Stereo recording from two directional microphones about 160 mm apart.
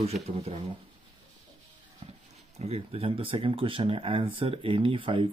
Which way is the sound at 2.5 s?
40° right (ahead or behind).